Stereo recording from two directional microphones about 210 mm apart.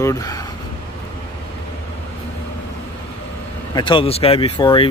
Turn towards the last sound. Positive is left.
turn(degrees=25)  # may be behind; listen again after turning